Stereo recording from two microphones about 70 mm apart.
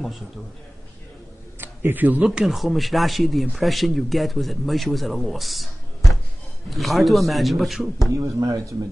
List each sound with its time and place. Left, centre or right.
1.6 s speech: right
2.4 s speech: centre
8.1 s speech: right